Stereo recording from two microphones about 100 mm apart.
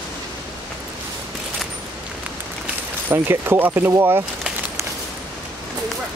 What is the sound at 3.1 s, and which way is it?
Speech, 25° right (ahead or behind).